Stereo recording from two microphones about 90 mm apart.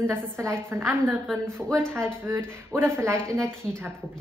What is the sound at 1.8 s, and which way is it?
Speech, 10° left (ahead or behind).